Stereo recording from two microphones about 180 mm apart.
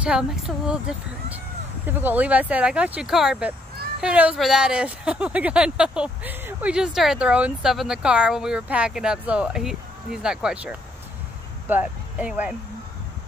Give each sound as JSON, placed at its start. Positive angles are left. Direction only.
{"t": 0.0, "sound": "speech", "side_deg": -5}